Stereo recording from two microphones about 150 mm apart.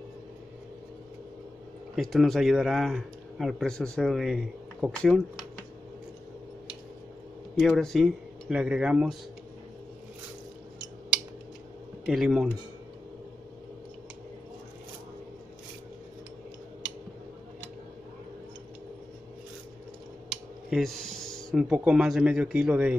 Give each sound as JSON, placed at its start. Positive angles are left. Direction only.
{"t": 2.0, "sound": "speech", "side_deg": 0}
{"t": 7.5, "sound": "speech", "side_deg": 0}
{"t": 12.1, "sound": "speech", "side_deg": 0}
{"t": 20.7, "sound": "speech", "side_deg": 0}